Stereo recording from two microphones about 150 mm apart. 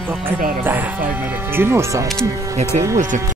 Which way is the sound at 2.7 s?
50° right (ahead or behind).